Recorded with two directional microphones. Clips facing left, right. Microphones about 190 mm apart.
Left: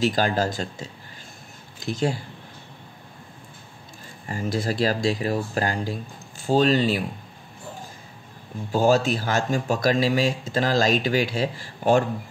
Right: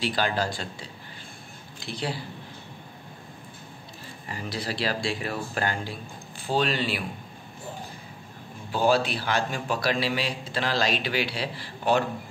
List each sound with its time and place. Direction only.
0.0 s speech: 45° left (ahead or behind)
4.3 s speech: 45° left (ahead or behind)
8.7 s speech: 45° left (ahead or behind)